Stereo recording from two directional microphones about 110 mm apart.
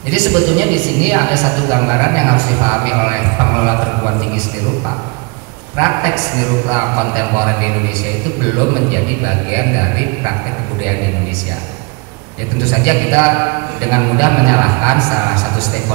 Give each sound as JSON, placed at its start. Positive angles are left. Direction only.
{"t": 0.1, "sound": "a woman's voice", "side_deg": -10}
{"t": 5.8, "sound": "a woman's voice", "side_deg": -15}
{"t": 12.7, "sound": "a woman's voice", "side_deg": -15}